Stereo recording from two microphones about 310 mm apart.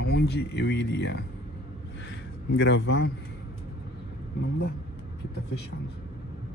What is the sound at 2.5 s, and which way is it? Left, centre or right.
Speech, left.